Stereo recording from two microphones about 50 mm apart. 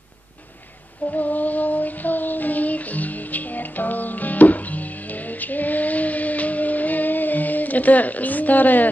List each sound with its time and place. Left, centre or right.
1.0 s child singing: left